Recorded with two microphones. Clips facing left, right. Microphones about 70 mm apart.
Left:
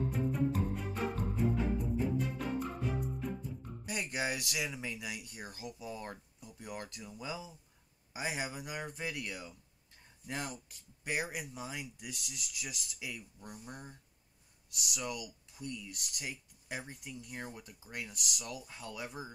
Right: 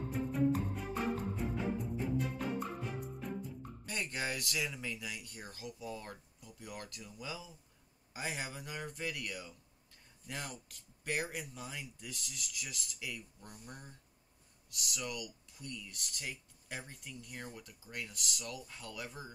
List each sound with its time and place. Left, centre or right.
0.1 s music: centre
3.8 s speech: centre